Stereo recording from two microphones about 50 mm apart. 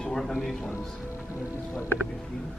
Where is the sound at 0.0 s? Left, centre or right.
Centre.